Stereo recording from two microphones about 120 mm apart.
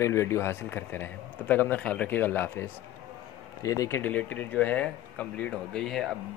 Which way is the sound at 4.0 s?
10° left (ahead or behind).